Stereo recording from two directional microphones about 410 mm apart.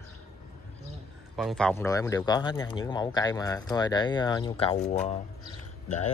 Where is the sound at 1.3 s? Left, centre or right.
Centre.